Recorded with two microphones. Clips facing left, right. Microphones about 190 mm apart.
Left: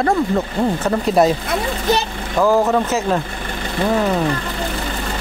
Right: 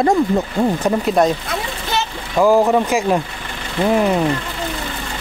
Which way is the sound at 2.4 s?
15° right (ahead or behind).